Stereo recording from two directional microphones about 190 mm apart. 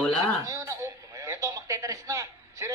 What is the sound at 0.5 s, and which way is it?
Radio, 15° right (ahead or behind).